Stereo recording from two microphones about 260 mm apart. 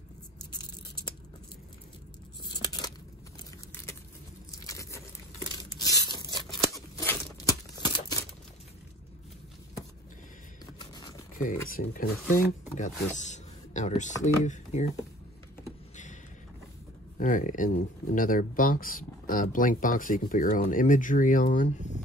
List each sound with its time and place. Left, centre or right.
2.4 s tearing: centre
4.6 s biting: centre
5.8 s tearing: centre
11.7 s speech: left
17.2 s speech: left